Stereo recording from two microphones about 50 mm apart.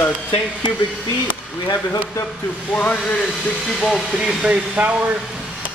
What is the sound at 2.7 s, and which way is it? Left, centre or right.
Speech, left.